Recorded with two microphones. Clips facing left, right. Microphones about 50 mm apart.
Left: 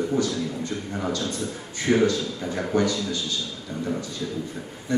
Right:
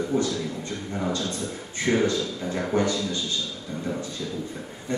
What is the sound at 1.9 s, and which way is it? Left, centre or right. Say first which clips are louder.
Speech: left 2 dB; centre.